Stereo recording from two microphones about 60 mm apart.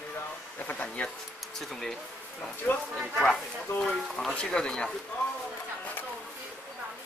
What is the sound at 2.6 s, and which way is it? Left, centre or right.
Speech, centre.